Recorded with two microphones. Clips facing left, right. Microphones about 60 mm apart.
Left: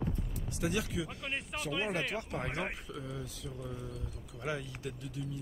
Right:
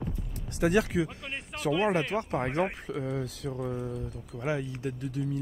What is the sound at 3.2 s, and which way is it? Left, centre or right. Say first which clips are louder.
Speech: right 9 dB; right.